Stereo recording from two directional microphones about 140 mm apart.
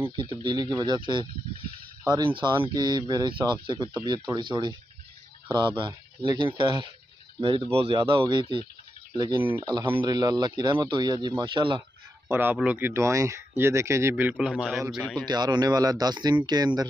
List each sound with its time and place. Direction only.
0.1 s speech: 30° right (ahead or behind)
9.4 s speech: 15° right (ahead or behind)
10.0 s speech: 30° right (ahead or behind)
12.3 s speech: 15° right (ahead or behind)
14.5 s a man's voice: centre (ahead or behind)
15.2 s speech: 30° right (ahead or behind)